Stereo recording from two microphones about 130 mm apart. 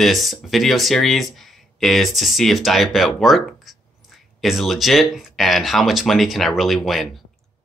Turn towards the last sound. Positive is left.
turn(degrees=0)  # may be behind; listen again after turning